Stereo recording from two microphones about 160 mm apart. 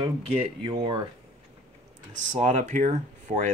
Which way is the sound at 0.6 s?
30° right (ahead or behind).